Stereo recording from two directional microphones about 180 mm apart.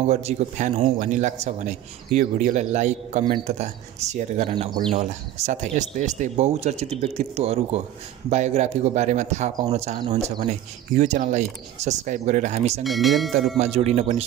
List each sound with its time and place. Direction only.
0.0 s a man's voice: 40° right (ahead or behind)
12.8 s speech: centre (ahead or behind)
13.6 s a man's voice: 35° right (ahead or behind)